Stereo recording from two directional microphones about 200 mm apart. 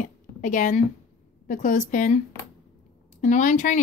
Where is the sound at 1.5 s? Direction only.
40° left (ahead or behind).